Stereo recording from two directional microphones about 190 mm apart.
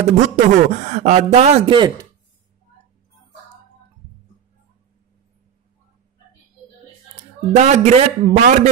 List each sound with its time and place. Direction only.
0.0 s speech: 35° right (ahead or behind)
7.5 s speech: 35° right (ahead or behind)